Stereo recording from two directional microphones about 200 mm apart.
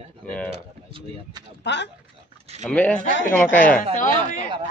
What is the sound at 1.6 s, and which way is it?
Speech, 60° left (ahead or behind).